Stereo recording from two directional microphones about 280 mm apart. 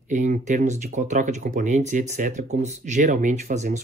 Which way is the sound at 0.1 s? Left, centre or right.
Right.